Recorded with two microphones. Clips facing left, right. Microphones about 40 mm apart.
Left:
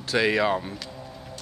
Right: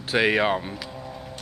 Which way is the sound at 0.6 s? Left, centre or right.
Centre.